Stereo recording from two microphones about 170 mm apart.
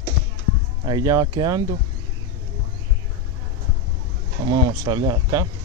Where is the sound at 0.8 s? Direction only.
25° right (ahead or behind).